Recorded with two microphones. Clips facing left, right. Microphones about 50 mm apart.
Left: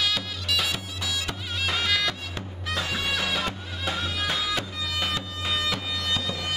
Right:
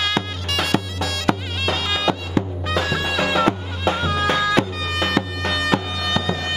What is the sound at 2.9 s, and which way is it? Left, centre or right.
Music, right.